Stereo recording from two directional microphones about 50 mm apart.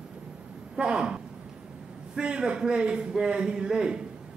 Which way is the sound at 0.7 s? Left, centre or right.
Centre.